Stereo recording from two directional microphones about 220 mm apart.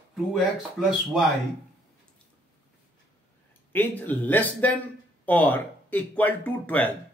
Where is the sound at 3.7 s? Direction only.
10° left (ahead or behind).